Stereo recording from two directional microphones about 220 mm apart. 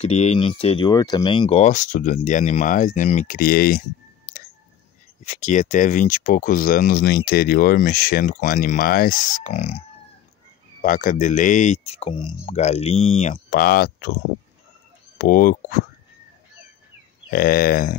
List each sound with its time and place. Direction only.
0.0 s speech: 30° left (ahead or behind)
5.2 s speech: 30° left (ahead or behind)
9.4 s speech: 30° left (ahead or behind)
10.8 s speech: 40° left (ahead or behind)
15.1 s speech: 40° left (ahead or behind)
17.3 s speech: 40° left (ahead or behind)